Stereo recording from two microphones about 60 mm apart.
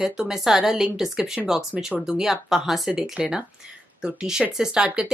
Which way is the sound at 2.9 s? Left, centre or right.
Centre.